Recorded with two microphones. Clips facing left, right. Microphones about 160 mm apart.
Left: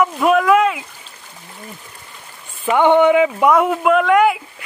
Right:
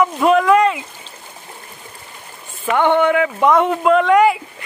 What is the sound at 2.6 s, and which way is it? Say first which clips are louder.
Speech: left 3 dB; 15° left (ahead or behind).